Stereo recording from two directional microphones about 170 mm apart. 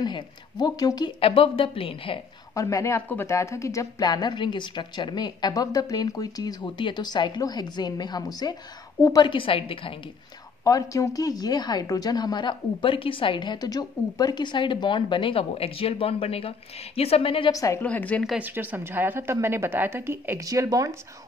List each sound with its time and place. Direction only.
0.0 s a woman's voice: 25° left (ahead or behind)
2.5 s a woman's voice: 20° left (ahead or behind)
10.6 s a woman's voice: 20° left (ahead or behind)
17.5 s a woman's voice: 20° left (ahead or behind)
17.8 s a woman's voice: 10° left (ahead or behind)
18.3 s a woman's voice: 10° right (ahead or behind)